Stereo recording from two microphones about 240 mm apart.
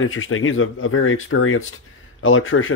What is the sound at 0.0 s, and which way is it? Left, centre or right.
Speech, left.